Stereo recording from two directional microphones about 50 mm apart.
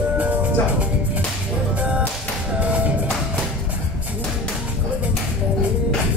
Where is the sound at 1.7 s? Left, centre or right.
Right.